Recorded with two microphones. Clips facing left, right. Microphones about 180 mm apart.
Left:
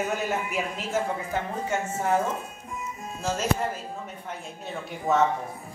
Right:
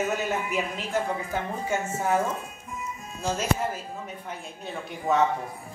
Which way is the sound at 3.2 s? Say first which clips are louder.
Even; centre (ahead or behind).